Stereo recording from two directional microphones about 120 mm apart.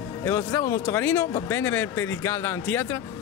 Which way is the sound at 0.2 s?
20° left (ahead or behind).